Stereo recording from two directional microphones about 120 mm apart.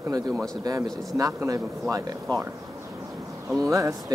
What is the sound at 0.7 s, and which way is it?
Speech, 30° right (ahead or behind).